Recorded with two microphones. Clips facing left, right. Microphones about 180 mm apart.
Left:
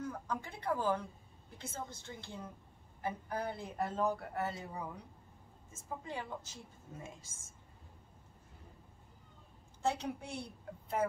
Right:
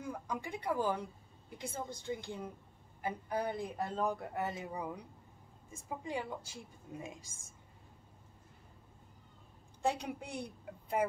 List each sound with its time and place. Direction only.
0.0 s a sound: 10° right (ahead or behind)
1.6 s a woman's voice: 15° right (ahead or behind)
9.8 s a woman's voice: 15° right (ahead or behind)